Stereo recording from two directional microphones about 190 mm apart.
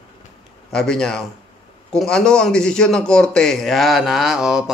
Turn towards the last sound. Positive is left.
turn(degrees=-5)  # may be behind; listen again after turning